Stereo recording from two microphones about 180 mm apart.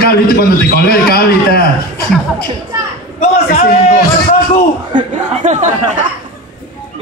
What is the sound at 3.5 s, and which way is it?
Speech, 50° left (ahead or behind).